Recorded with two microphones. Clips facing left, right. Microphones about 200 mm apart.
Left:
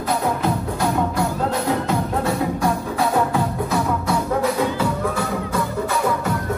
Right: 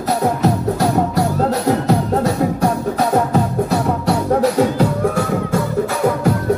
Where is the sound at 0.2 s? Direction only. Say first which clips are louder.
Right 5 dB; 40° right (ahead or behind).